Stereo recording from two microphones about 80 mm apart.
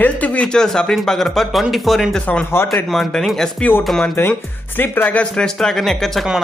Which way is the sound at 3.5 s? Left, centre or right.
Left.